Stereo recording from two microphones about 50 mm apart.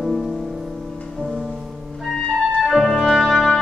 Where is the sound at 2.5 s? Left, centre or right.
Centre.